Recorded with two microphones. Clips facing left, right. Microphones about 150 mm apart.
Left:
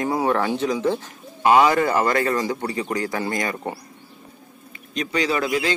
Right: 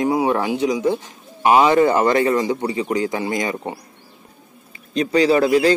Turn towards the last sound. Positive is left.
turn(degrees=-35)  # may be behind; listen again after turning